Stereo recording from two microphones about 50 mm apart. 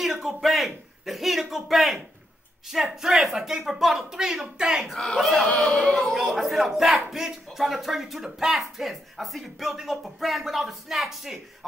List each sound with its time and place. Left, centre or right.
0.0 s a sound: centre
0.4 s speech: centre
4.9 s speech: centre
5.7 s speech: centre
5.9 s speech: centre